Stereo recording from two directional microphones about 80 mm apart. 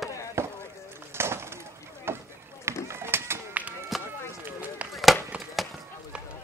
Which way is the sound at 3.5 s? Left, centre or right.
Centre.